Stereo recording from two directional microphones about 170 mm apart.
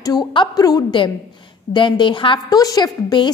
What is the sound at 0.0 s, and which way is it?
A woman's voice, 25° left (ahead or behind).